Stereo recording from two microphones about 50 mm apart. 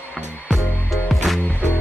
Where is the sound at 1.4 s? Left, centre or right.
Left.